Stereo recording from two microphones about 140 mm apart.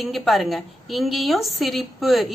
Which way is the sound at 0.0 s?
Centre (ahead or behind).